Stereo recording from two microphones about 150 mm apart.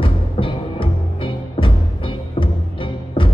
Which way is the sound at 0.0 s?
35° left (ahead or behind).